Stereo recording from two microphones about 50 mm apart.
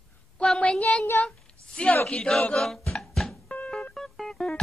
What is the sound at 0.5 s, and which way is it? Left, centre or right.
A woman's voice, left.